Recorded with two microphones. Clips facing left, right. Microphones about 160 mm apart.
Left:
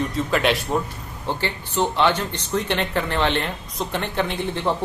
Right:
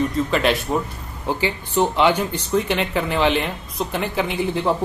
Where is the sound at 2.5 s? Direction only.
Centre (ahead or behind).